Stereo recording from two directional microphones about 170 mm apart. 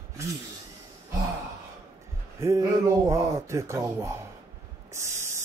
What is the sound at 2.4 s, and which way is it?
Mantra, 15° right (ahead or behind).